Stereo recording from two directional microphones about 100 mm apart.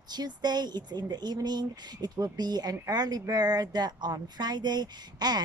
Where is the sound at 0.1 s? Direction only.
45° right (ahead or behind).